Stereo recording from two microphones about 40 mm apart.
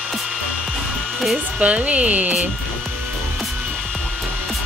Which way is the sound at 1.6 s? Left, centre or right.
Right.